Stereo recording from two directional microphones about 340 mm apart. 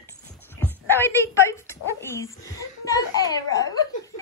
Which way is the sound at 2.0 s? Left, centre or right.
Centre.